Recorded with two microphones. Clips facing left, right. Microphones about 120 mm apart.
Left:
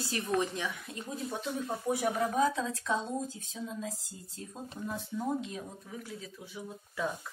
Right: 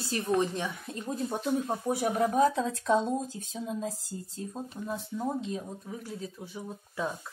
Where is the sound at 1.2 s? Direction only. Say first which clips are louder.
Right 6 dB; 40° right (ahead or behind).